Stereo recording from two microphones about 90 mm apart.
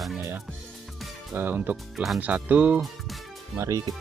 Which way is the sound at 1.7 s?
Centre (ahead or behind).